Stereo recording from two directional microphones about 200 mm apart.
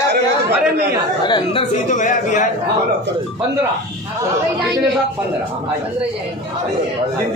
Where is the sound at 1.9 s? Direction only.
40° left (ahead or behind).